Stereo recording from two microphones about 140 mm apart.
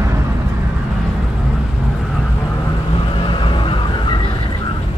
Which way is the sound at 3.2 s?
35° left (ahead or behind).